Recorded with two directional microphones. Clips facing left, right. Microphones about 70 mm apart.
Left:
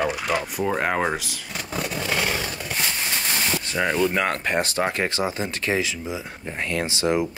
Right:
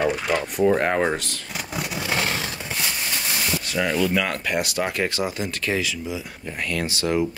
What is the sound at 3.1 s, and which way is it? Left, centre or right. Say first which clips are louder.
Speech: left 1 dB; left.